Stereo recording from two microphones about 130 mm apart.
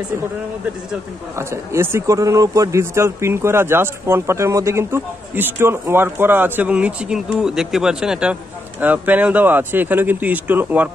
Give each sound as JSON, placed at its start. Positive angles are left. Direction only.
{"t": 1.5, "sound": "a man's voice", "side_deg": -20}